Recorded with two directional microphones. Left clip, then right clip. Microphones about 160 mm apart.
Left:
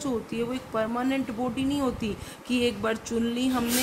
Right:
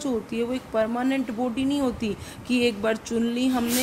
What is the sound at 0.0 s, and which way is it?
A woman's voice, 20° right (ahead or behind).